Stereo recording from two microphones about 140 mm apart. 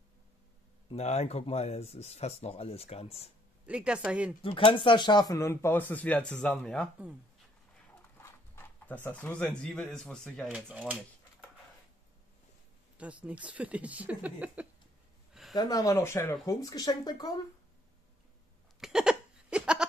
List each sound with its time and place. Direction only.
0.8 s speech: 50° left (ahead or behind)
3.6 s speech: 5° right (ahead or behind)
4.4 s speech: 40° left (ahead or behind); by 6.9 s 10° left (ahead or behind)
8.2 s speech: 15° left (ahead or behind)
10.5 s speech: 10° right (ahead or behind)
12.9 s speech: 10° right (ahead or behind)
15.5 s speech: 25° left (ahead or behind)
18.8 s a sound: 5° right (ahead or behind)